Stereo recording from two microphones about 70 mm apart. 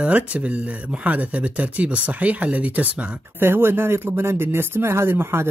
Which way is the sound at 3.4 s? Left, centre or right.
Right.